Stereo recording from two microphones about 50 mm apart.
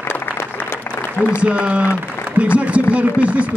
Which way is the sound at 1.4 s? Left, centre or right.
Right.